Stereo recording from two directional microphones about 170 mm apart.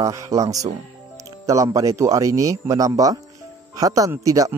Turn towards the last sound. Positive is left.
turn(degrees=-20)  # may be behind; listen again after turning